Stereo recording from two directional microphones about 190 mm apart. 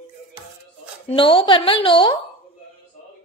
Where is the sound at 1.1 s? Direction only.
25° left (ahead or behind).